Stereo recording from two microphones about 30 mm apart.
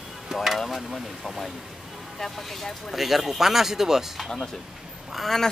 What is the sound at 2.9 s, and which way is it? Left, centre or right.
Speech, centre.